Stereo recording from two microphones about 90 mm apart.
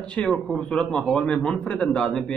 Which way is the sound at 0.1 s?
10° left (ahead or behind).